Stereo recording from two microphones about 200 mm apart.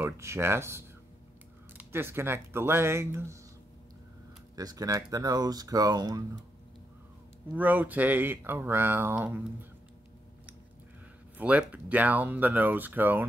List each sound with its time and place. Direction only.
0.0 s speech: 15° right (ahead or behind)
4.6 s speech: 15° right (ahead or behind)
7.5 s speech: 10° right (ahead or behind)
11.3 s speech: 5° right (ahead or behind)